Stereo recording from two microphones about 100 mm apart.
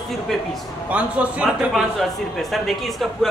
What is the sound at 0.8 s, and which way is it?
Speech, 15° right (ahead or behind).